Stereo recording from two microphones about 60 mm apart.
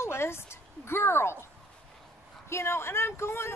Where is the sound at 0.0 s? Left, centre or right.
Left.